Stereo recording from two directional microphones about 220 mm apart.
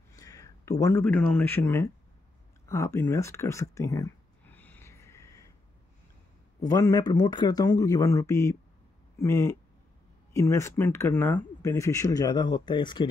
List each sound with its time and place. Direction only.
0.1 s speech: 15° left (ahead or behind)
2.6 s a sound: 15° left (ahead or behind)
6.6 s speech: 15° left (ahead or behind)